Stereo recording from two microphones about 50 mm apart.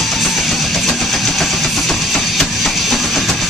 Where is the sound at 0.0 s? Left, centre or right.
Centre.